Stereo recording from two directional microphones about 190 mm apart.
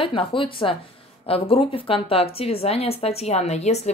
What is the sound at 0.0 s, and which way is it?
A woman's voice, 25° left (ahead or behind).